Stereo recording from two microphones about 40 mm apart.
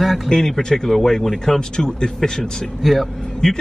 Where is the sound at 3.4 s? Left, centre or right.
Centre.